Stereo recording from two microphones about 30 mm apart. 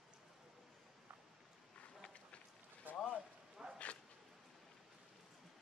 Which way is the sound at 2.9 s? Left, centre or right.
Right.